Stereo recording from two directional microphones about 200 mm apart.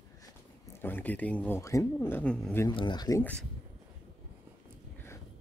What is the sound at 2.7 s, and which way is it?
Speech, 25° left (ahead or behind).